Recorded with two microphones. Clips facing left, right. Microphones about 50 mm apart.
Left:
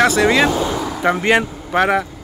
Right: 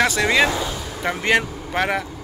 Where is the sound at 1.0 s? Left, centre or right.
Centre.